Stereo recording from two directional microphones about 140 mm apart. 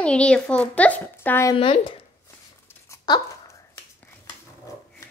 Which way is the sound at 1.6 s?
40° left (ahead or behind).